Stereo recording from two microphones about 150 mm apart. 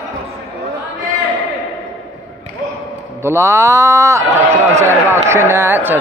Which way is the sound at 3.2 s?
20° right (ahead or behind).